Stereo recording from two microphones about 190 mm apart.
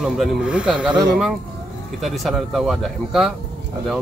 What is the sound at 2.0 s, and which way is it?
A man's voice, centre (ahead or behind).